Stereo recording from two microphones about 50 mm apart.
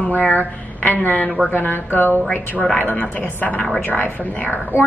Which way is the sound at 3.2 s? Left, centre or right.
Left.